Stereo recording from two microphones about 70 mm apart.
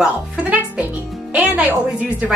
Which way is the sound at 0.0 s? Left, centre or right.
Centre.